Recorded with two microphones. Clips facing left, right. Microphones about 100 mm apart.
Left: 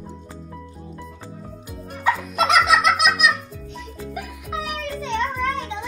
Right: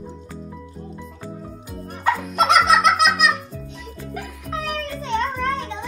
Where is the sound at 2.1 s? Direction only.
10° left (ahead or behind).